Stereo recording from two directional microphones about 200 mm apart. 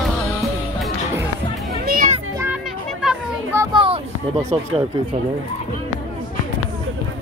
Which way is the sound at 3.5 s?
15° right (ahead or behind).